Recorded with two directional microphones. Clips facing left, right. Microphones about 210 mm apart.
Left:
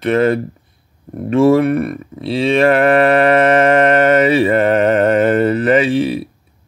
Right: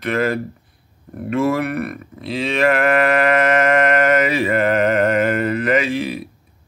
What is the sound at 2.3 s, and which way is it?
Mantra, 35° left (ahead or behind).